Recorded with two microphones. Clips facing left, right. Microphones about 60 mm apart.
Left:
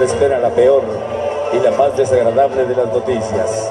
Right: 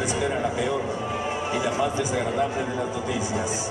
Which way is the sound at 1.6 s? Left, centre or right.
Left.